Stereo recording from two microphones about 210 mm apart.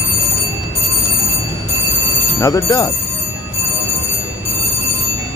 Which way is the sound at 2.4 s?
15° left (ahead or behind).